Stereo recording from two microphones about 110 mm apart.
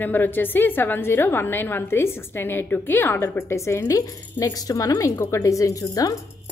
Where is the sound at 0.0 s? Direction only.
15° left (ahead or behind).